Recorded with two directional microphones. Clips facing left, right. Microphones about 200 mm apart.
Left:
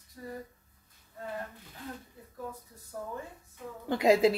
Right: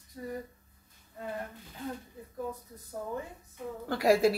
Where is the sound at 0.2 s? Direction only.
25° right (ahead or behind).